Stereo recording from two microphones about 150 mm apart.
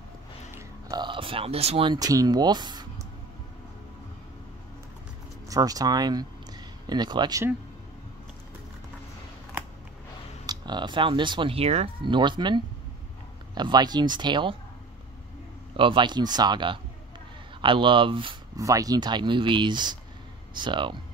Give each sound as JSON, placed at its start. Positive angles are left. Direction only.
{"t": 0.6, "sound": "speech", "side_deg": -25}
{"t": 2.0, "sound": "speech", "side_deg": -25}
{"t": 5.5, "sound": "speech", "side_deg": -25}
{"t": 10.4, "sound": "speech", "side_deg": -30}
{"t": 15.7, "sound": "speech", "side_deg": -35}
{"t": 18.6, "sound": "speech", "side_deg": -25}